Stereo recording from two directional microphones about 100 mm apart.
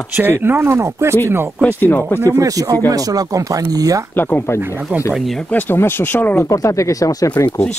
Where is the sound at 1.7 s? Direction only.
20° left (ahead or behind).